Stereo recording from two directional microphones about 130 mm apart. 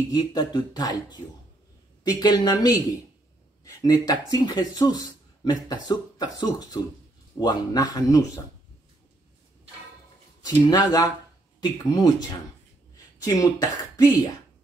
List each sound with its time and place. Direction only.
0.1 s speech: 30° left (ahead or behind)
10.4 s speech: 30° left (ahead or behind)
13.2 s speech: 25° left (ahead or behind)